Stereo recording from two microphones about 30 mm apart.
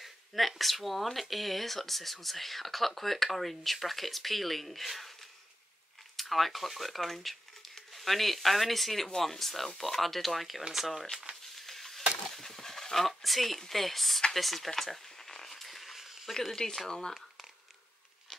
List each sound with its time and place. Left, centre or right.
0.0 s speech: centre
6.3 s speech: centre
11.5 s a sound: centre
12.3 s speech: centre
14.8 s a sound: centre
16.6 s speech: left